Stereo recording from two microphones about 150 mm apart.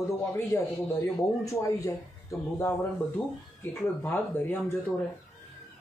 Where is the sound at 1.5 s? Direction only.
20° left (ahead or behind).